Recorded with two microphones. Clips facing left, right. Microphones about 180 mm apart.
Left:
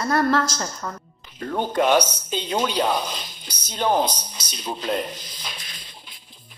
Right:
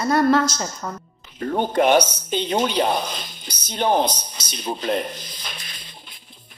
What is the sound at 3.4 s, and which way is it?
Speech, 20° right (ahead or behind).